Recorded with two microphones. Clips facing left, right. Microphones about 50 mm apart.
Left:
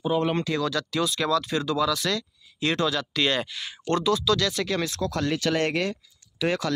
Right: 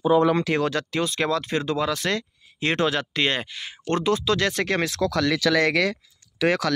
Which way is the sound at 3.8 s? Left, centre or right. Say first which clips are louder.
Right 1 dB; right.